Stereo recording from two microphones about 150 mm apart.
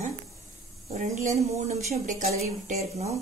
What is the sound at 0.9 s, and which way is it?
Speech, 60° right (ahead or behind).